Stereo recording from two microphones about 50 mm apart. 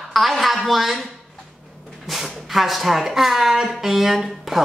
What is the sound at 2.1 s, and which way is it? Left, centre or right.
A man's voice, centre.